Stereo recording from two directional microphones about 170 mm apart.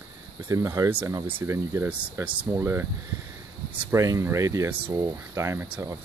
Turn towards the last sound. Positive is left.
turn(degrees=-15)  # may be behind; listen again after turning